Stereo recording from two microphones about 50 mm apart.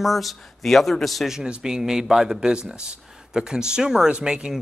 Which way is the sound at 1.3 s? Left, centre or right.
Centre.